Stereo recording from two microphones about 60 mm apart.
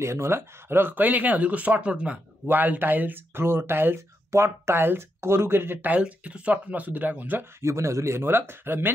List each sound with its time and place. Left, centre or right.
0.0 s speech: right; by 2.1 s centre
2.4 s speech: right
5.9 s speech: right
7.6 s speech: right